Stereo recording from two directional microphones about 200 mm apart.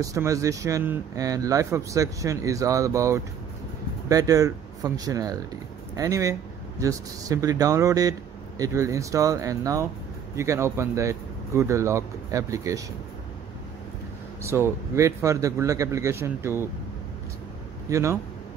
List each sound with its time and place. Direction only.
0.0 s speech: 15° right (ahead or behind)
14.4 s speech: 10° right (ahead or behind)
17.8 s speech: 15° right (ahead or behind)